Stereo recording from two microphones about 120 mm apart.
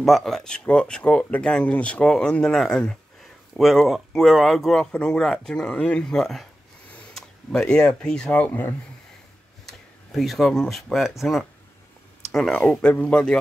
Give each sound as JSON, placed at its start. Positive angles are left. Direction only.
{"t": 0.0, "sound": "speech", "side_deg": 0}
{"t": 8.5, "sound": "speech", "side_deg": 20}
{"t": 9.7, "sound": "speech", "side_deg": 0}